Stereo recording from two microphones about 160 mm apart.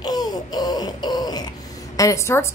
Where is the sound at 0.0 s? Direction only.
25° left (ahead or behind).